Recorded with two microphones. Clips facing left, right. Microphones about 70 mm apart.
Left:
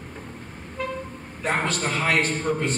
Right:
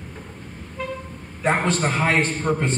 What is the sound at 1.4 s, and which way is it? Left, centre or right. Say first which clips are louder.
Speech: right 4 dB; right.